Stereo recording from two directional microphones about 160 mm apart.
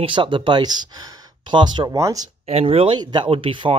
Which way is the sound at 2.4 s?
40° right (ahead or behind).